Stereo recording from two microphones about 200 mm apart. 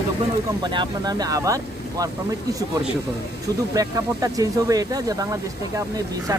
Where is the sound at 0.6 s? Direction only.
20° right (ahead or behind).